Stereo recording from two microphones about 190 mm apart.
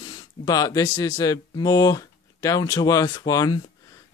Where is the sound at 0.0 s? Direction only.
20° left (ahead or behind).